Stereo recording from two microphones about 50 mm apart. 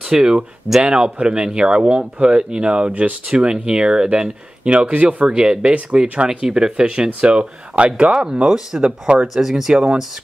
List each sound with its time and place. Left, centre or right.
0.1 s speech: centre
8.8 s speech: right
9.3 s speech: centre